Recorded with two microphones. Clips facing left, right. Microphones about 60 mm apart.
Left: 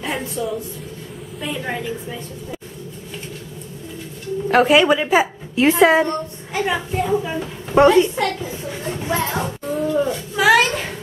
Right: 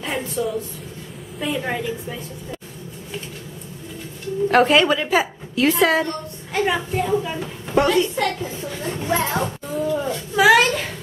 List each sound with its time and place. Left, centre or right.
0.4 s a child's voice: centre
4.5 s a woman's voice: centre; by 6.1 s left
6.5 s a child's voice: centre
7.7 s a woman's voice: left
8.2 s a sound: centre